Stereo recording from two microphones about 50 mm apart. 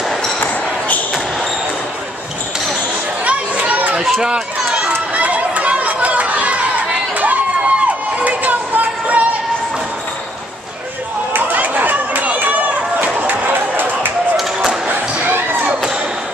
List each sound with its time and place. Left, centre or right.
0.4 s basketball bounce: left
3.3 s children playing: right
5.1 s chatter: right
11.3 s chatter: right
13.0 s a sound: right